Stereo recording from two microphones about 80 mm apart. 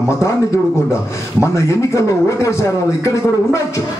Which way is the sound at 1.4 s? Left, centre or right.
Left.